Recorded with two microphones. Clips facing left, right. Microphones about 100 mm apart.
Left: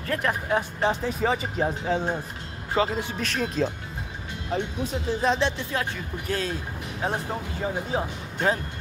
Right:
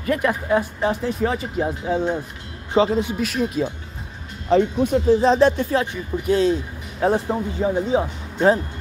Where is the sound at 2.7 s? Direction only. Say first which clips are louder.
Right 7 dB; 25° right (ahead or behind).